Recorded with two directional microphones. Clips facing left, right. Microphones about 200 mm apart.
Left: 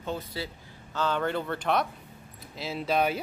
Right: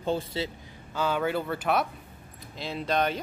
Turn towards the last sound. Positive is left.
turn(degrees=5)  # may be behind; listen again after turning